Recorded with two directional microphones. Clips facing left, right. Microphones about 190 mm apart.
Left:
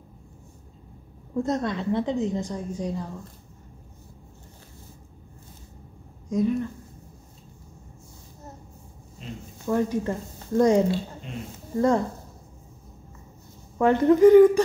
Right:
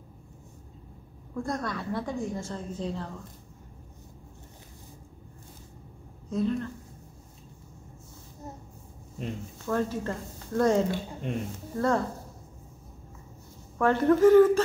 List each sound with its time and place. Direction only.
1.3 s a woman's voice: 20° left (ahead or behind)
6.2 s speech: 15° left (ahead or behind)
9.7 s speech: 15° left (ahead or behind)
13.7 s speech: 15° left (ahead or behind)